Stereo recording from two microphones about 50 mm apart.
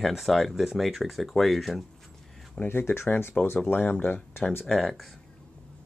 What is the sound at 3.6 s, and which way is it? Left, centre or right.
Speech, left.